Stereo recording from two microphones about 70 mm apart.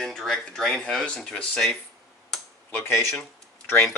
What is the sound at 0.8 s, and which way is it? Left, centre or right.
Speech, centre.